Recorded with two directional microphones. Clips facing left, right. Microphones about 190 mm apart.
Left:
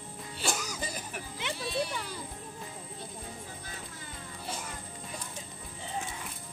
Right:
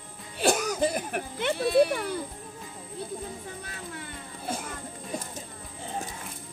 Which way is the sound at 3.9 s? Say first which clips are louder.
Right 5 dB; 65° right (ahead or behind).